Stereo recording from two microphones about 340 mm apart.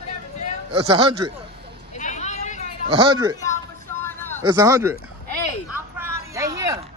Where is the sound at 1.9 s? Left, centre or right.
Left.